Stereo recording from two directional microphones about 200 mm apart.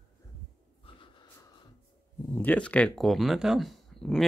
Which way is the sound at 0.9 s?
25° left (ahead or behind).